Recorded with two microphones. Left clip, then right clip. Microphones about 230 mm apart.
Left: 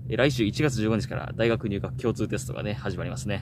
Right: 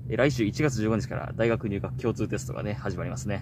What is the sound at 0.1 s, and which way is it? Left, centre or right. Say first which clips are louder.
Speech: left 1 dB; centre.